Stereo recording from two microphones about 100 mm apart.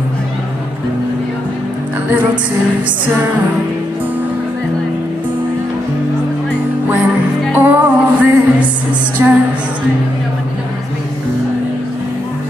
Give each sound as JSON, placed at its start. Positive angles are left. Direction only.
{"t": 7.5, "sound": "music", "side_deg": -20}
{"t": 9.2, "sound": "music", "side_deg": -25}